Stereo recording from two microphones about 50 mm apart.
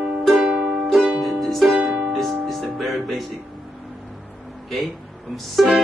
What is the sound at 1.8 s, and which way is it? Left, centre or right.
Music, right.